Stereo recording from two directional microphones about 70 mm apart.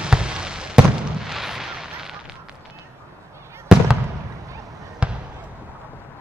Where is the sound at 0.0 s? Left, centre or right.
Centre.